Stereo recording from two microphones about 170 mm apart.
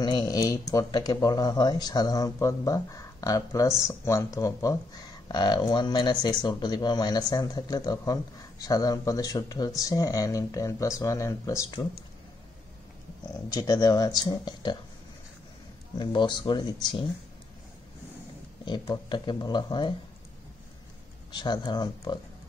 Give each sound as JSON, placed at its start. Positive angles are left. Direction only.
{"t": 0.0, "sound": "speech", "side_deg": 25}
{"t": 13.5, "sound": "speech", "side_deg": 25}
{"t": 16.0, "sound": "speech", "side_deg": 25}
{"t": 18.7, "sound": "speech", "side_deg": 25}
{"t": 21.3, "sound": "speech", "side_deg": 25}